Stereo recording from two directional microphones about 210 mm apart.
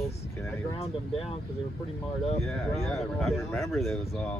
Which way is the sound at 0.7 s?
30° left (ahead or behind).